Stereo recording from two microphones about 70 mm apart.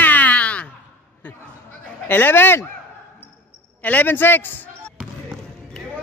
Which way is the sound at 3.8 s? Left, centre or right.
Left.